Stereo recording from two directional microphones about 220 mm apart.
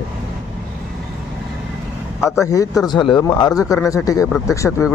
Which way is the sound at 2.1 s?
15° left (ahead or behind).